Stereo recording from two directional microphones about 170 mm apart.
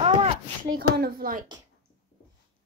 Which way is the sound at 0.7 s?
65° right (ahead or behind).